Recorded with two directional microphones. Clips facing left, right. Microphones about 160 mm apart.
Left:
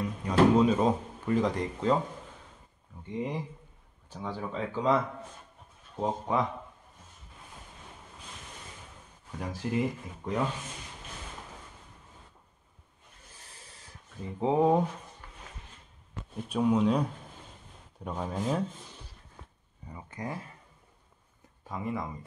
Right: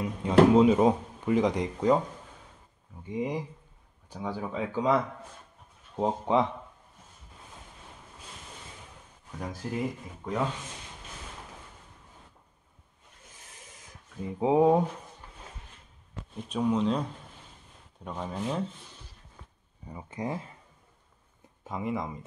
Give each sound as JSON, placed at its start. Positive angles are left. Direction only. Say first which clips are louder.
{"t": 0.0, "sound": "speech", "louder": "right 3 dB", "side_deg": -20}
{"t": 3.1, "sound": "speech", "louder": "right 2 dB", "side_deg": -10}
{"t": 9.4, "sound": "speech", "louder": "left 2 dB", "side_deg": 0}
{"t": 14.4, "sound": "speech", "louder": "right 3 dB", "side_deg": -10}
{"t": 16.4, "sound": "speech", "louder": "left 1 dB", "side_deg": 10}
{"t": 18.0, "sound": "speech", "louder": "left 1 dB", "side_deg": 5}
{"t": 19.9, "sound": "speech", "louder": "right 4 dB", "side_deg": -20}
{"t": 21.6, "sound": "speech", "louder": "right 2 dB", "side_deg": -20}